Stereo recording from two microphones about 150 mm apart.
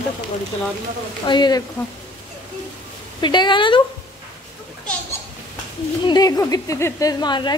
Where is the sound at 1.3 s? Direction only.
30° left (ahead or behind).